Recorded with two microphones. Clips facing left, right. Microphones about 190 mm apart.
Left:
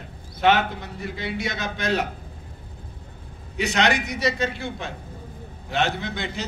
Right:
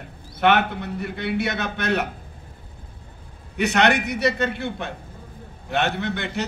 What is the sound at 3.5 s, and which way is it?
A man's voice, 60° right (ahead or behind).